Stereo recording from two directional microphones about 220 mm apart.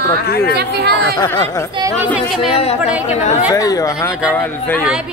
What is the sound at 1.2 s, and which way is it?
Speech, 15° left (ahead or behind).